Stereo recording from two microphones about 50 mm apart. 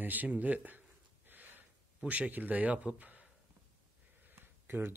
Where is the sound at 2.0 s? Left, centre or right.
Right.